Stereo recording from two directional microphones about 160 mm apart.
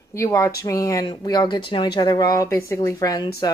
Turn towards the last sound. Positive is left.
turn(degrees=20)  # may be behind; listen again after turning